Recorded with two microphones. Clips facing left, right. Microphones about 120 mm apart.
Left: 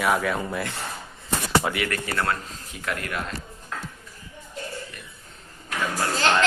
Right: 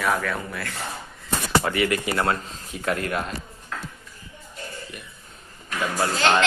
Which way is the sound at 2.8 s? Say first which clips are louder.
Right 5 dB; 25° right (ahead or behind).